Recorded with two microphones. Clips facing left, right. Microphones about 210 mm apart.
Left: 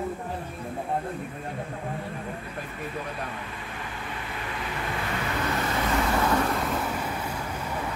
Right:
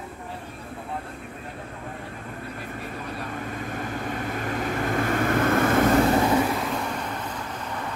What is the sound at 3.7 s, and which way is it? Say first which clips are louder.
Vehicle: right 7 dB; 45° right (ahead or behind).